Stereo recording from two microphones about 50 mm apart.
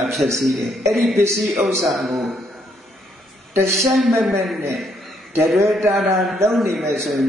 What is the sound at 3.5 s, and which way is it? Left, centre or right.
Speech, right.